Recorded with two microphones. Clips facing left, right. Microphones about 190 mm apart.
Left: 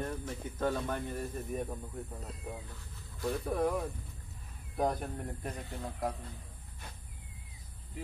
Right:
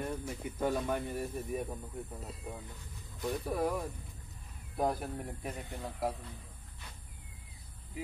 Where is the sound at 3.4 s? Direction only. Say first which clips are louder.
Left 2 dB; centre (ahead or behind).